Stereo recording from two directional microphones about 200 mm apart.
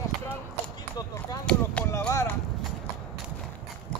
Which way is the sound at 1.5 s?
10° left (ahead or behind).